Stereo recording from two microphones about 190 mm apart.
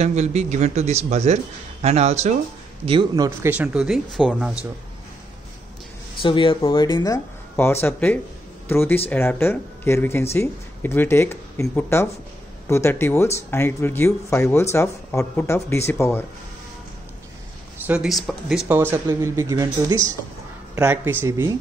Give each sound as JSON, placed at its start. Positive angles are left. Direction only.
{"t": 0.0, "sound": "a man's voice", "side_deg": -35}
{"t": 3.3, "sound": "speech", "side_deg": -10}
{"t": 6.2, "sound": "speech", "side_deg": 25}
{"t": 17.8, "sound": "speech", "side_deg": -5}
{"t": 18.7, "sound": "speech", "side_deg": -10}